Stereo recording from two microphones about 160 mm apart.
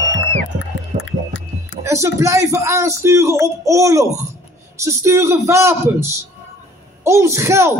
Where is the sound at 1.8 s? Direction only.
20° right (ahead or behind).